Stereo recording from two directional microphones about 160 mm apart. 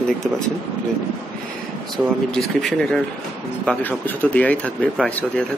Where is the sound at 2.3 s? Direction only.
5° left (ahead or behind).